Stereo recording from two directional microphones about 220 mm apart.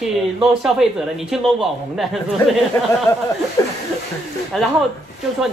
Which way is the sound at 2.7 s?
10° left (ahead or behind).